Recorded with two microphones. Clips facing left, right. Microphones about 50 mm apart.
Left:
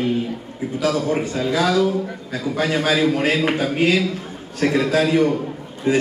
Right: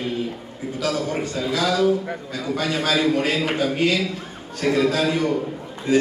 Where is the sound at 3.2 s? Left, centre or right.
Left.